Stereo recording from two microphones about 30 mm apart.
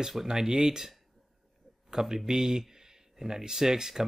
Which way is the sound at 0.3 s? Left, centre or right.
Centre.